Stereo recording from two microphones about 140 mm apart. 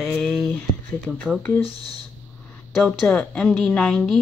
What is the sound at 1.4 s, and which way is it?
Speech, 15° left (ahead or behind).